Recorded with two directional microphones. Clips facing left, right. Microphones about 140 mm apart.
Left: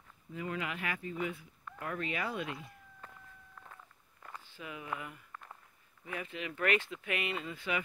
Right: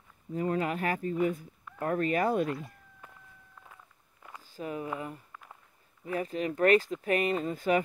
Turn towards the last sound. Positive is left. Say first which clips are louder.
# right 9 dB
turn(degrees=-45)  # may be behind; listen again after turning